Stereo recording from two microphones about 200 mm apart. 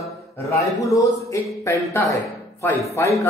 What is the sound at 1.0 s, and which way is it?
A man's voice, 15° left (ahead or behind).